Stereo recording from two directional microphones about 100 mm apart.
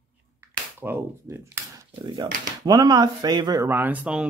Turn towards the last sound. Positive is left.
turn(degrees=-20)  # may be behind; listen again after turning